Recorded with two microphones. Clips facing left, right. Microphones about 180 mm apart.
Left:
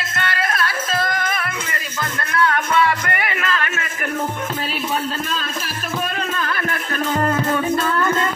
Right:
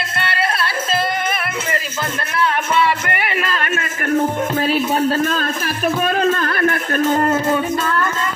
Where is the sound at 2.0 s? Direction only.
25° right (ahead or behind).